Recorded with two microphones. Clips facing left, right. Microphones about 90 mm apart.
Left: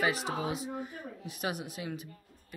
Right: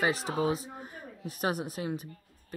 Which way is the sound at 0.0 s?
35° right (ahead or behind).